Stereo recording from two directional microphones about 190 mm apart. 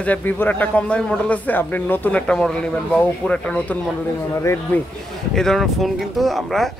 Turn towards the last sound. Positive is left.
turn(degrees=0)  # may be behind; listen again after turning